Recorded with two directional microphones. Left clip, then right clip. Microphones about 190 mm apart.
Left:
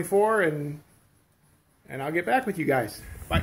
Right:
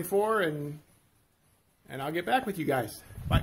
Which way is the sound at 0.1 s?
15° right (ahead or behind).